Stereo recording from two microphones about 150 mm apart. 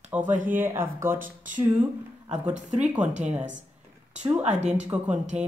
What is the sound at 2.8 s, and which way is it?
Speech, 10° right (ahead or behind).